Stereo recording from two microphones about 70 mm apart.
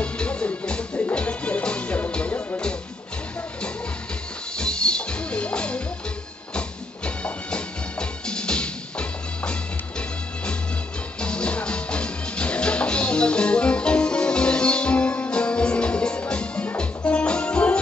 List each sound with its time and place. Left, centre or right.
0.0 s music: centre
4.6 s music: centre
7.2 s music: centre